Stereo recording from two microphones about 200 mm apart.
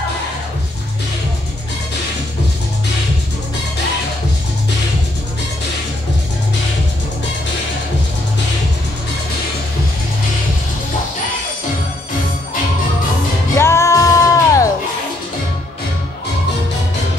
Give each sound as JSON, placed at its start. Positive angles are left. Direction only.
{"t": 13.6, "sound": "music", "side_deg": 15}